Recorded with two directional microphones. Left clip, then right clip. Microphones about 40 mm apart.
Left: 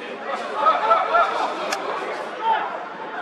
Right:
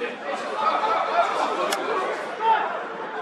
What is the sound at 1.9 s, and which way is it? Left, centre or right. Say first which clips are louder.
Chatter: right 1 dB; centre.